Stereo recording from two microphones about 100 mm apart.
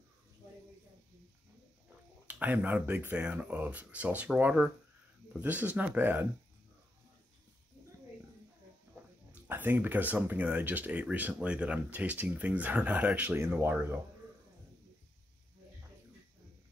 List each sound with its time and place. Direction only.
2.2 s speech: 15° right (ahead or behind)
9.3 s speech: 20° right (ahead or behind)